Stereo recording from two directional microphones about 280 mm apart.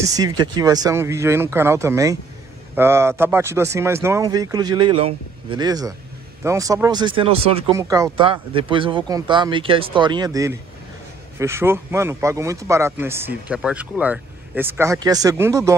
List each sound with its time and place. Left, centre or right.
0.1 s speech: centre